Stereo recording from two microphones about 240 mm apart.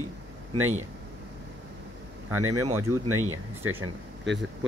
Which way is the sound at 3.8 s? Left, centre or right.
Right.